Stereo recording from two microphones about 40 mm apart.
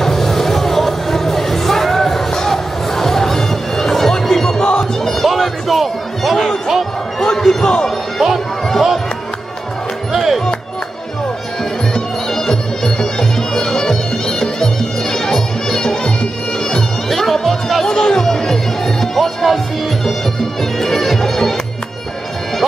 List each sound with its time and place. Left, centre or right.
0.0 s music: centre
4.6 s a sound: left
5.0 s music: centre
7.2 s a sound: centre
8.2 s music: centre
10.1 s music: centre
11.9 s music: centre
17.1 s music: centre
17.8 s music: centre
20.8 s music: centre